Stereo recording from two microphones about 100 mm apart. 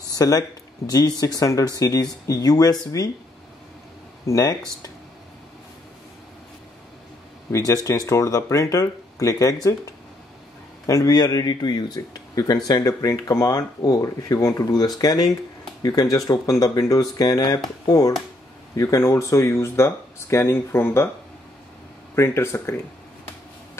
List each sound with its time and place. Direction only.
0.1 s speech: 40° left (ahead or behind)
4.3 s speech: 40° left (ahead or behind)
7.5 s speech: 35° left (ahead or behind)
10.9 s speech: 40° left (ahead or behind)
13.6 s speech: 45° left (ahead or behind); by 21.1 s 25° left (ahead or behind)
22.1 s speech: 25° left (ahead or behind)